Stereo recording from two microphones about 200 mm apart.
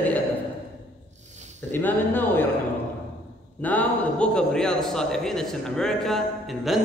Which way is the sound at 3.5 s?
10° left (ahead or behind).